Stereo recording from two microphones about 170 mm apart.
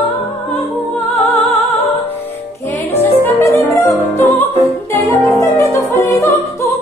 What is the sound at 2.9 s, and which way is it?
Music, 15° left (ahead or behind).